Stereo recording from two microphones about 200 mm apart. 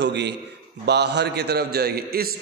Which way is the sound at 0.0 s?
60° right (ahead or behind).